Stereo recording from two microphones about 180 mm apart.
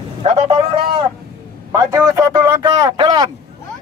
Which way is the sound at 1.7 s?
20° right (ahead or behind).